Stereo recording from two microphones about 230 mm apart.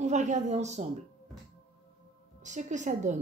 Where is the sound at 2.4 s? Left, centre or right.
Right.